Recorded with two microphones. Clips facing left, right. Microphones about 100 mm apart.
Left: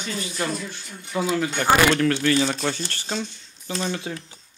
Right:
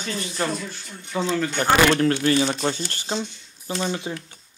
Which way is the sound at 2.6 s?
15° right (ahead or behind).